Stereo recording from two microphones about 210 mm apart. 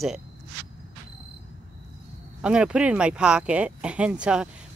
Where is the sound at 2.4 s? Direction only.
5° right (ahead or behind).